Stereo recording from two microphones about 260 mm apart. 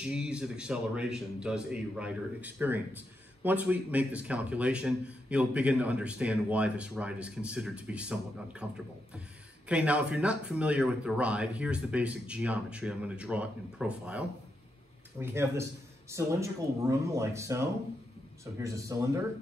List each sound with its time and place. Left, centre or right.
0.0 s a man's voice: centre